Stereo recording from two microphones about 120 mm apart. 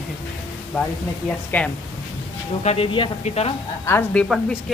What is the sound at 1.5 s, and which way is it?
Speech, 15° left (ahead or behind).